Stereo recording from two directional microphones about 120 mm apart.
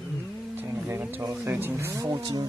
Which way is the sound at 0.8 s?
20° right (ahead or behind).